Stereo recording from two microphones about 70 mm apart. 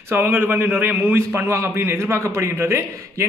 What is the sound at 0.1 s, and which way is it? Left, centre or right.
A man's voice, right.